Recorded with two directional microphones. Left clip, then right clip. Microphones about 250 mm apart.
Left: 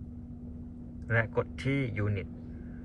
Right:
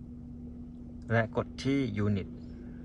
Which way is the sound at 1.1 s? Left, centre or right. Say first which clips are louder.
Even; centre.